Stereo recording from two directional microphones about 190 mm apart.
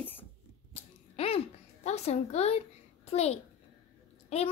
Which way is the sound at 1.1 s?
30° left (ahead or behind).